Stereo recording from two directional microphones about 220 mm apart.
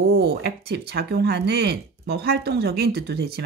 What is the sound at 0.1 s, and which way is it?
Speech, 50° right (ahead or behind).